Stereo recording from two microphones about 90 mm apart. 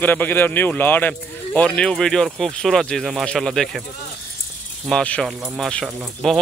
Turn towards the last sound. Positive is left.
turn(degrees=0)  # may be behind; listen again after turning